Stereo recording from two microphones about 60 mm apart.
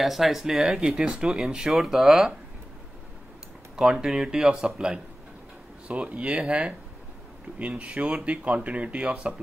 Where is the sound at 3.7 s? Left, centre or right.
Centre.